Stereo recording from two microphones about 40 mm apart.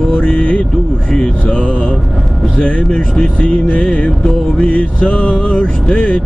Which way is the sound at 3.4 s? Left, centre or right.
Left.